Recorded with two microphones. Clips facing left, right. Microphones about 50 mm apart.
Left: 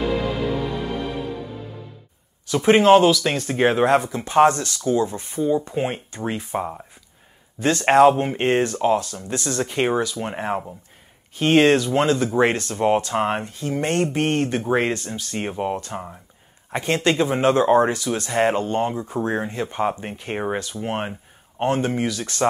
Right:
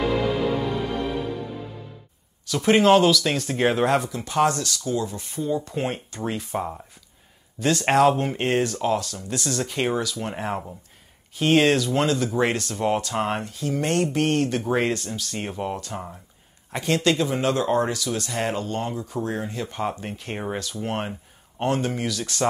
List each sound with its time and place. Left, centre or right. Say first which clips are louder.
2.4 s speech: left 3 dB; centre
4.1 s speech: left 6 dB; left; by 22.4 s centre